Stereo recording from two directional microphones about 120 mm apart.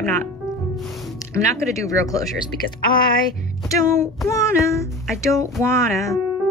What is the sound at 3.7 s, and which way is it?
Speech, 25° left (ahead or behind).